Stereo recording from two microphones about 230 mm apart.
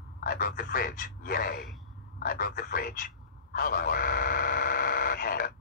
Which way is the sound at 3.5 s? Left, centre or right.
Left.